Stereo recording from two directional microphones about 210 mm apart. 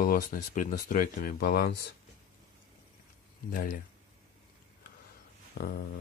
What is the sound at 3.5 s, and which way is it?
Speech, 40° left (ahead or behind).